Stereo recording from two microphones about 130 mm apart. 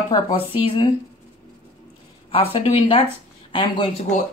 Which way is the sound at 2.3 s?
45° left (ahead or behind).